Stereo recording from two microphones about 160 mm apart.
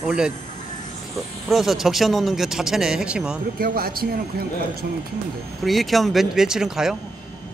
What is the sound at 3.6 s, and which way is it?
Speech, 70° right (ahead or behind).